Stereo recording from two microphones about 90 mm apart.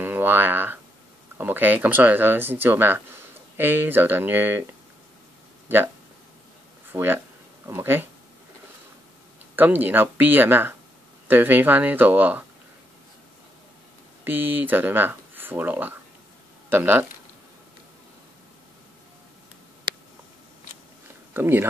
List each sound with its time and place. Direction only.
0.0 s speech: 20° right (ahead or behind)
6.9 s speech: 20° right (ahead or behind)
9.6 s speech: 20° right (ahead or behind)
14.2 s speech: 20° right (ahead or behind)
21.3 s speech: 25° right (ahead or behind)